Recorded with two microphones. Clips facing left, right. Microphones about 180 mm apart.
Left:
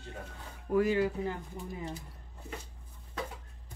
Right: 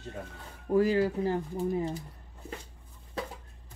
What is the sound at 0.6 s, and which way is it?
Speech, 30° right (ahead or behind).